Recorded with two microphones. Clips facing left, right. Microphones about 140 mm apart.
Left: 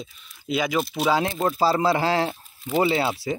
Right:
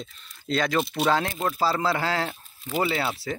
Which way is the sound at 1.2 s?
20° left (ahead or behind).